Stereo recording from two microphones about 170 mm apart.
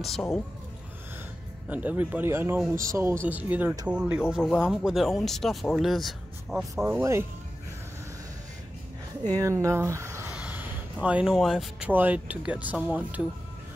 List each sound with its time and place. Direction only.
0.0 s speech: centre (ahead or behind)
1.7 s speech: 10° right (ahead or behind)
7.0 s speech: 15° right (ahead or behind)
9.4 s speech: 15° right (ahead or behind)